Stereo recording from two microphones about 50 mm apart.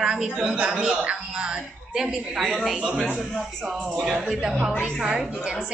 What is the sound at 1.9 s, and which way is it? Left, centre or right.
Speech, centre.